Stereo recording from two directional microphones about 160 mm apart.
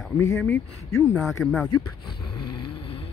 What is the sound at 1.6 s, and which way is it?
Snoring, 25° left (ahead or behind).